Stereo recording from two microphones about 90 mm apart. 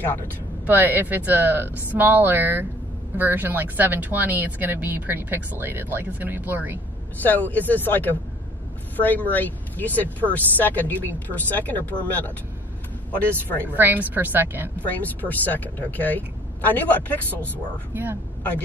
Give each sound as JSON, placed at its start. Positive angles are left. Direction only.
{"t": 0.7, "sound": "speech", "side_deg": -20}
{"t": 7.2, "sound": "speech", "side_deg": 20}
{"t": 13.7, "sound": "speech", "side_deg": -20}
{"t": 14.8, "sound": "speech", "side_deg": 20}
{"t": 17.9, "sound": "speech", "side_deg": -20}